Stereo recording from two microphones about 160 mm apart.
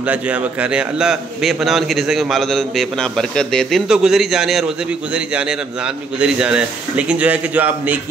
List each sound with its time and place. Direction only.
0.0 s a man's voice: 10° right (ahead or behind)